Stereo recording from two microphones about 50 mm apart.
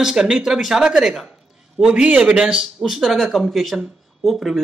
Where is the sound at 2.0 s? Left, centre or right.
Centre.